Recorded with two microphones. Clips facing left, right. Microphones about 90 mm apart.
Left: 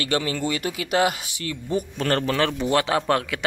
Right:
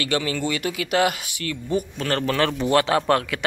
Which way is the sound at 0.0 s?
35° left (ahead or behind).